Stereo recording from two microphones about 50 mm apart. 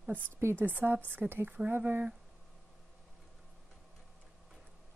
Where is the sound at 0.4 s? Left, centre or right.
Right.